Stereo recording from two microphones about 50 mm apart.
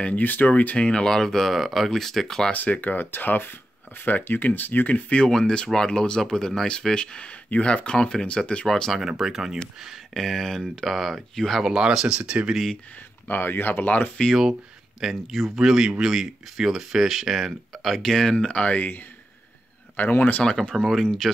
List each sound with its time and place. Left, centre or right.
0.1 s speech: left; by 2.5 s centre
2.5 s speech: left; by 8.9 s centre
8.9 s speech: centre
10.1 s speech: centre
11.6 s speech: centre
13.3 s speech: left
15.0 s speech: centre
17.9 s speech: centre
18.3 s speech: centre
20.0 s speech: left
20.7 s speech: centre
21.0 s speech: centre